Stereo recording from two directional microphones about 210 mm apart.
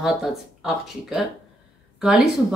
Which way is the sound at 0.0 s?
Centre (ahead or behind).